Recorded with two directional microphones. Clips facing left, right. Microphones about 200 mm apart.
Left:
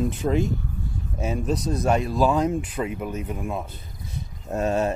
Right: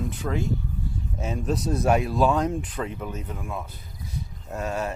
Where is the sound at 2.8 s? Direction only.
15° left (ahead or behind).